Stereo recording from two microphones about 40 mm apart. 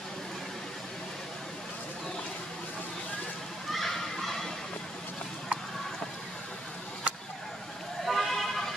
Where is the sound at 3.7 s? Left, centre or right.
Centre.